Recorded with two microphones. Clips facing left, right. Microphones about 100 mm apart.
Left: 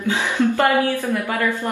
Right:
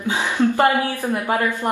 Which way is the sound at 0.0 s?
15° right (ahead or behind).